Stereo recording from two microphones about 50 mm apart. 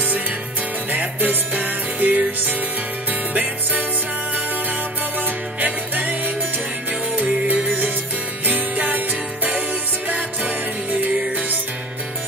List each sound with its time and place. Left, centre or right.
0.9 s music: right
5.6 s music: right